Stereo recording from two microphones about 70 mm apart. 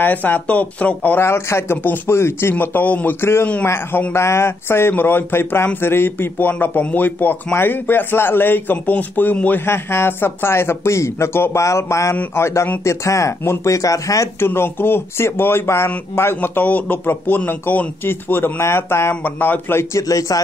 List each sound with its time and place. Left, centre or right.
0.0 s a man's voice: left
1.2 s speech: left
1.8 s a man's voice: left
2.1 s speech: left
2.5 s a man's voice: left
3.2 s a man's voice: left
9.7 s speech: left
14.4 s speech: left